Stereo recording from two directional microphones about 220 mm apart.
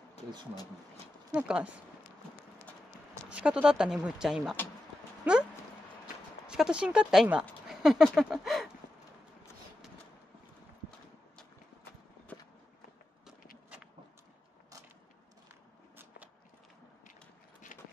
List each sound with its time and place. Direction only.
1.3 s speech: 5° right (ahead or behind)
3.3 s speech: 5° right (ahead or behind)
6.4 s speech: 5° right (ahead or behind)
17.7 s run: 35° left (ahead or behind)